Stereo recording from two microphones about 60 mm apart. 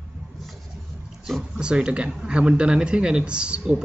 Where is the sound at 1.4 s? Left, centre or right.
Centre.